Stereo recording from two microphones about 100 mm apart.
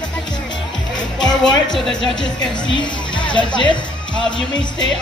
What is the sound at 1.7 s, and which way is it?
Speech, centre (ahead or behind).